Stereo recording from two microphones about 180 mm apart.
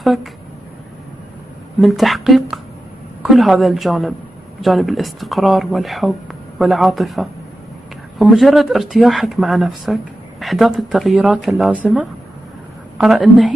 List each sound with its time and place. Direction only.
0.0 s speech: centre (ahead or behind)
1.8 s speech: centre (ahead or behind)